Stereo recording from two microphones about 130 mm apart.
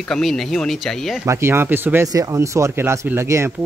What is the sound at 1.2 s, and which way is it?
Speech, 20° right (ahead or behind).